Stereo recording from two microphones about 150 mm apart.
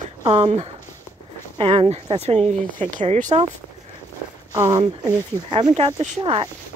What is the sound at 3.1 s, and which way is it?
Speech, 55° right (ahead or behind).